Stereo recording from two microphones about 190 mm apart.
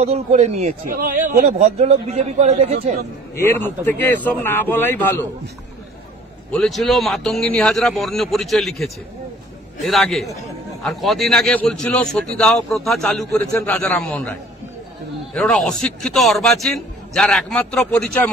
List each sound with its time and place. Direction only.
0.0 s a man's voice: 35° right (ahead or behind)
3.8 s a man's voice: 10° left (ahead or behind)
6.5 s a man's voice: centre (ahead or behind)
15.3 s a man's voice: 5° left (ahead or behind)